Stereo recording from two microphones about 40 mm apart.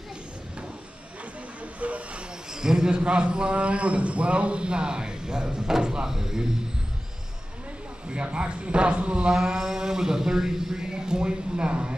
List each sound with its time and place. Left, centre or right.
1.6 s hiss: right
2.5 s a sound: centre
3.0 s a man's voice: right
8.1 s a man's voice: right